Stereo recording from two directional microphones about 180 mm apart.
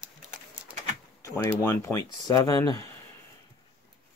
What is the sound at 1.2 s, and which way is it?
Speech, 15° left (ahead or behind).